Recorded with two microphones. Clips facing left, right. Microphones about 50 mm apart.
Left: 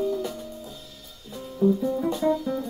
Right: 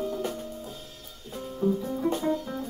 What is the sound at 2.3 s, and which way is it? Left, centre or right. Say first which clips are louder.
Music: left 4 dB; right.